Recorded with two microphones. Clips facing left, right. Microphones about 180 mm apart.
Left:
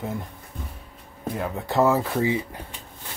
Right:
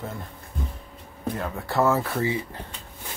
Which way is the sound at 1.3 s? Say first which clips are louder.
Left 3 dB; 15° left (ahead or behind).